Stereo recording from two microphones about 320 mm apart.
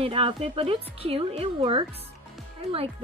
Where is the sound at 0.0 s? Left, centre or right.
Centre.